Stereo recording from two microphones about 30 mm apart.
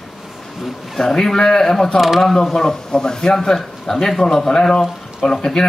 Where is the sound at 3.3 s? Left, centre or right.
Centre.